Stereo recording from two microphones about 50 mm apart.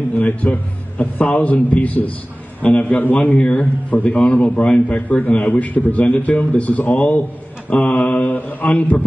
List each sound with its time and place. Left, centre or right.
0.2 s a man's voice: left
3.3 s a man's voice: centre
3.9 s a man's voice: left